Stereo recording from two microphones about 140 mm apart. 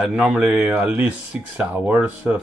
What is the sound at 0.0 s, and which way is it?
Speech, 5° right (ahead or behind).